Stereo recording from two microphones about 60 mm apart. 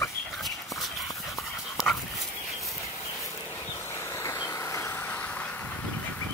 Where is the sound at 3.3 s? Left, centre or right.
Left.